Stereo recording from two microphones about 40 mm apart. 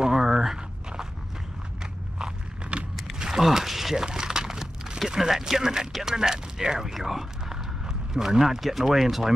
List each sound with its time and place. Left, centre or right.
0.0 s walk: centre
2.7 s vehicle: right
3.2 s a sound: centre
3.4 s speech: centre
4.0 s a sound: centre
6.0 s speech: centre